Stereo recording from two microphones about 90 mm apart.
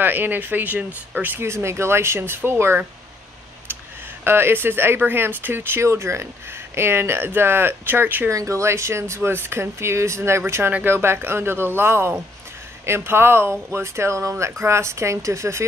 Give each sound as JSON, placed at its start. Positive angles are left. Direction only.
{"t": 0.0, "sound": "speech", "side_deg": -20}
{"t": 4.2, "sound": "speech", "side_deg": -25}
{"t": 8.3, "sound": "speech", "side_deg": -35}